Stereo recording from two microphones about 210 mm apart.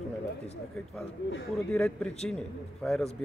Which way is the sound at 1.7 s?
5° left (ahead or behind).